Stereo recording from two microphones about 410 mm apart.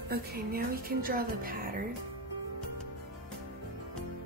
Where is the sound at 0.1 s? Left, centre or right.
Right.